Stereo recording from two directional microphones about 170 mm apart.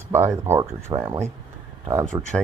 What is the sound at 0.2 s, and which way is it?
Speech, 15° right (ahead or behind).